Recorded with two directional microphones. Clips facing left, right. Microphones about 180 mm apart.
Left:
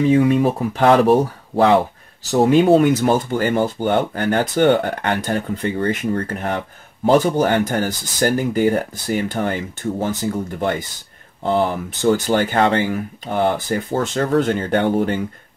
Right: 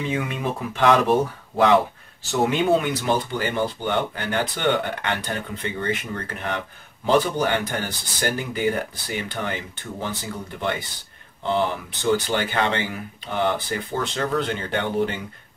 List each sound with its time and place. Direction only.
0.1 s speech: 35° left (ahead or behind)